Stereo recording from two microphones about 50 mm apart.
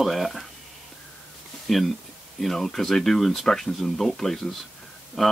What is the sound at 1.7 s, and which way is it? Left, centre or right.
Speech, centre.